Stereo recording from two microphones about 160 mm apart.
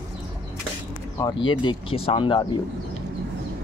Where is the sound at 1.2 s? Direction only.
30° left (ahead or behind).